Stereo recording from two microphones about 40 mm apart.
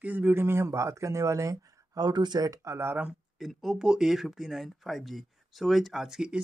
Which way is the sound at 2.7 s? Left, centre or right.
Right.